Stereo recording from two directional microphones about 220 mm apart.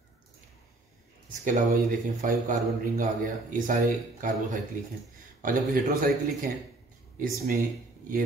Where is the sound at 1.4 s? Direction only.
35° right (ahead or behind).